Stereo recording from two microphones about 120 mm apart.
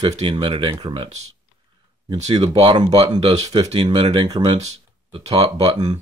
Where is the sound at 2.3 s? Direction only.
60° right (ahead or behind).